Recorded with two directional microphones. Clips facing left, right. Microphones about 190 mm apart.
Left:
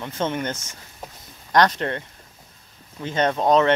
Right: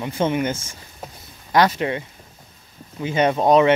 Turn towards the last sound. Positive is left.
turn(degrees=-10)  # may be behind; listen again after turning